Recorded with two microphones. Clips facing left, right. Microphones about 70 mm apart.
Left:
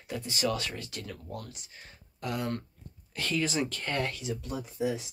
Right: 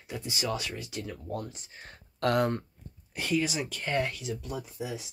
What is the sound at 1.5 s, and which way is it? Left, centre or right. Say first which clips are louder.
Speech: right 3 dB; right.